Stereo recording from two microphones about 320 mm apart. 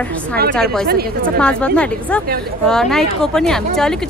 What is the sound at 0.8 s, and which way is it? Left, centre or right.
Speech, right.